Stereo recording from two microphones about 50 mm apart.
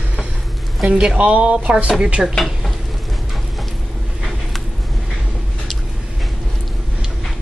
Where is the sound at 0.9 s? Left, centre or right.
Centre.